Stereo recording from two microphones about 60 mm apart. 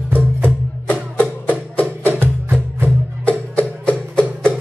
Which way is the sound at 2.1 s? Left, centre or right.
Right.